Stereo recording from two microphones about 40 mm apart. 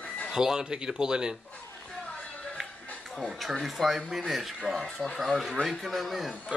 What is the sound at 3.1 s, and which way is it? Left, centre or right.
Speech, centre.